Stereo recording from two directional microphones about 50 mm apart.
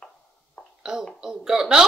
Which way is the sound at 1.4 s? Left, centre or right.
Centre.